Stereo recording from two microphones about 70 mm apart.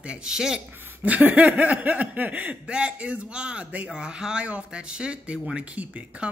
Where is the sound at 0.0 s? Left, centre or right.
Centre.